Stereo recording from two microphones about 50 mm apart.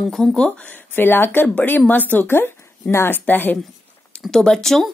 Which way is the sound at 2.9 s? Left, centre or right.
Left.